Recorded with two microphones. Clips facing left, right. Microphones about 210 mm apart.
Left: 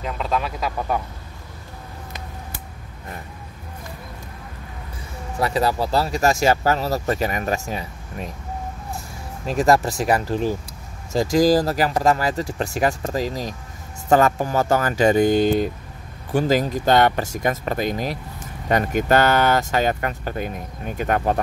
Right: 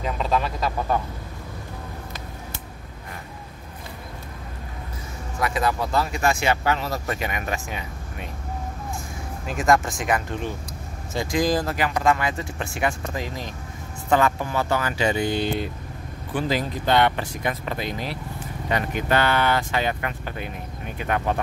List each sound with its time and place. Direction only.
0.0 s speech: centre (ahead or behind)
5.4 s speech: 35° left (ahead or behind)
9.5 s speech: 35° left (ahead or behind)